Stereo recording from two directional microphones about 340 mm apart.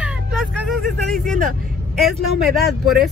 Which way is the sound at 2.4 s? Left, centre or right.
Centre.